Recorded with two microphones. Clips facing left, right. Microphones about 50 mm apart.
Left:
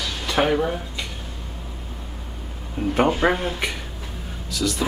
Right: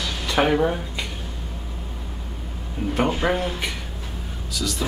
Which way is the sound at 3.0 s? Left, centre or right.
Centre.